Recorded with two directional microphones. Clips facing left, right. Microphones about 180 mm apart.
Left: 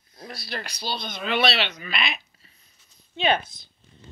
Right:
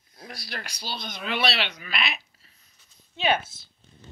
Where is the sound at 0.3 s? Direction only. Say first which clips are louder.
Left 4 dB; 10° right (ahead or behind).